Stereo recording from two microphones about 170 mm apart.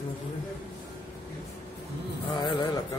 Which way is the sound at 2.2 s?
25° left (ahead or behind).